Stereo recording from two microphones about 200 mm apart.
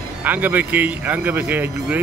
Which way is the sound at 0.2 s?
10° right (ahead or behind).